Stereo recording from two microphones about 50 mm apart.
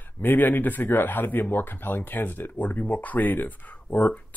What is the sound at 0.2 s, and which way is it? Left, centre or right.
Speech, left.